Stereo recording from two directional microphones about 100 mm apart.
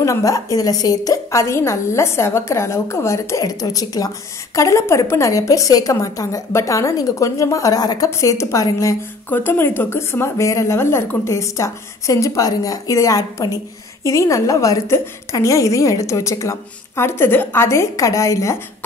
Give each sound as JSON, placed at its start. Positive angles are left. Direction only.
{"t": 0.0, "sound": "a woman's voice", "side_deg": 30}